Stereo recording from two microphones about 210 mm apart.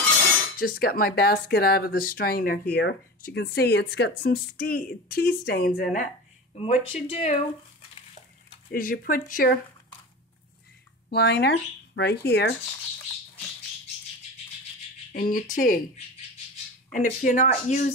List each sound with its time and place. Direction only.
0.6 s speech: 45° left (ahead or behind)
6.5 s speech: 30° left (ahead or behind)
8.7 s speech: 45° left (ahead or behind)
11.1 s speech: 50° left (ahead or behind)
15.1 s speech: 40° left (ahead or behind)
16.9 s speech: 40° left (ahead or behind)